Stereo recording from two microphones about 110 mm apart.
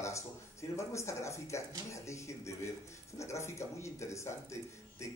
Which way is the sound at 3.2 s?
25° left (ahead or behind).